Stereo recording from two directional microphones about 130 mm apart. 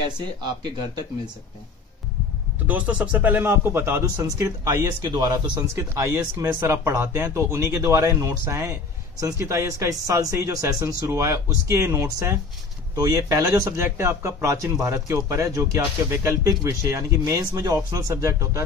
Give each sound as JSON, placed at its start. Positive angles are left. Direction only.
{"t": 0.4, "sound": "speech", "side_deg": -35}
{"t": 2.6, "sound": "a man's voice", "side_deg": -10}